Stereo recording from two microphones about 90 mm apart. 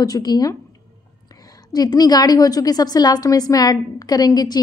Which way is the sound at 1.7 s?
45° left (ahead or behind).